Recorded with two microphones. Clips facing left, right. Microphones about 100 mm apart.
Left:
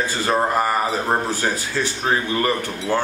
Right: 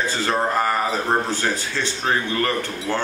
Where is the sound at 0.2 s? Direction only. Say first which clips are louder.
Left 2 dB; 10° left (ahead or behind).